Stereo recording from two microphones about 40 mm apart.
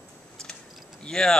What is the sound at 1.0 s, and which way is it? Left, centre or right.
Speech, centre.